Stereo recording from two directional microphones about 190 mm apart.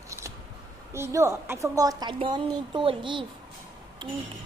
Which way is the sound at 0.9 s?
15° right (ahead or behind).